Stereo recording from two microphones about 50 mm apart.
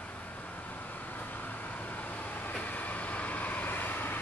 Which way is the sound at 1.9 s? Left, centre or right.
Left.